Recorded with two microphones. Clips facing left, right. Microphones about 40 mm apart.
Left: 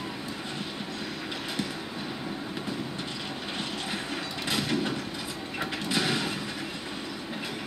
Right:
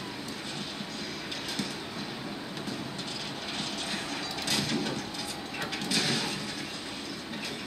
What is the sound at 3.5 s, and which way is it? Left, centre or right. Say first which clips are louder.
Vehicle: left 1 dB; centre.